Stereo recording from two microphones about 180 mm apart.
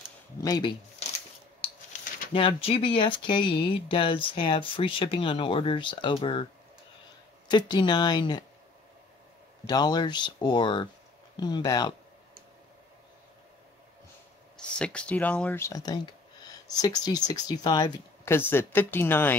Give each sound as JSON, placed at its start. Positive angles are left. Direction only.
{"t": 0.4, "sound": "speech", "side_deg": 20}
{"t": 1.6, "sound": "a sound", "side_deg": 35}
{"t": 2.4, "sound": "speech", "side_deg": 30}
{"t": 7.4, "sound": "speech", "side_deg": 25}
{"t": 9.7, "sound": "speech", "side_deg": 25}
{"t": 14.8, "sound": "speech", "side_deg": 5}